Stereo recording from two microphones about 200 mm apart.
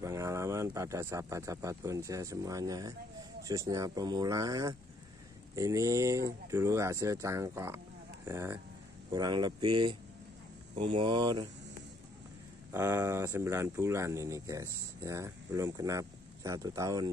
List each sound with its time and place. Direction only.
0.0 s speech: 15° right (ahead or behind)
12.7 s speech: 15° right (ahead or behind)